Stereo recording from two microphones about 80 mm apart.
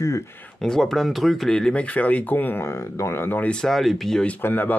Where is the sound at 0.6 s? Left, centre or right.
Centre; by 3.5 s left.